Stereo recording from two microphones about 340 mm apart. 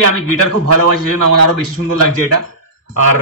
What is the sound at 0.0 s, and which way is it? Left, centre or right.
A man's voice, right.